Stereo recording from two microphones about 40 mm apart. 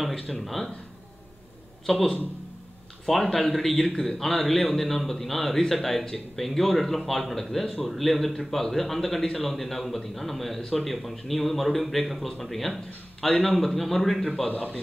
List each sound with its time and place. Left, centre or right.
0.0 s speech: centre
1.9 s speech: centre
14.5 s a man's voice: left